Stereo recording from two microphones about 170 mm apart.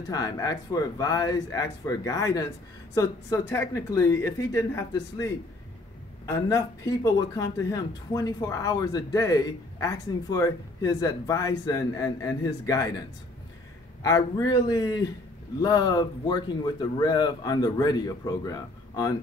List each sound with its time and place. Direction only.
0.1 s speech: 20° left (ahead or behind)
14.0 s speech: 20° left (ahead or behind)